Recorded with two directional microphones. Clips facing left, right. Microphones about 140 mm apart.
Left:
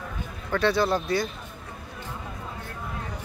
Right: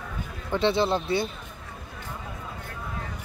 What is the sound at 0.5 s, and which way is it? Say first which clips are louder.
Speech: even; 25° right (ahead or behind).